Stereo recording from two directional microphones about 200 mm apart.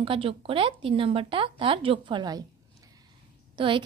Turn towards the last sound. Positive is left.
turn(degrees=-25)  # may be behind; listen again after turning